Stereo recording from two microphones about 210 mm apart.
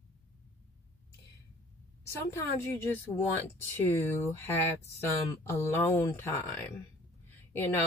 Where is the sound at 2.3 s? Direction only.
10° left (ahead or behind).